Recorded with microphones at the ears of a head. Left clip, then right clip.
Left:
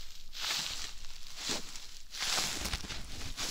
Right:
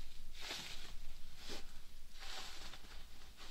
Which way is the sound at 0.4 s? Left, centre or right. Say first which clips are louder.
Left 12 dB; left.